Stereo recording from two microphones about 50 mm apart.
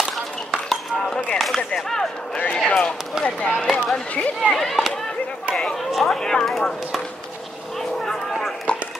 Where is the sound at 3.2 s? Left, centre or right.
Left.